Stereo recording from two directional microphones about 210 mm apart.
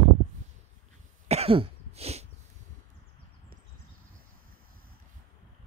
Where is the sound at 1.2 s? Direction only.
30° right (ahead or behind).